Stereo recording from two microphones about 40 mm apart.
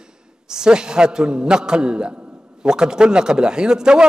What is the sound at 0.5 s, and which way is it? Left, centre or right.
A man's voice, centre.